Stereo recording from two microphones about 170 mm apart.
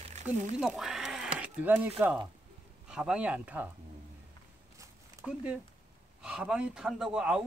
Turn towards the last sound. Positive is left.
turn(degrees=-5)  # may be behind; listen again after turning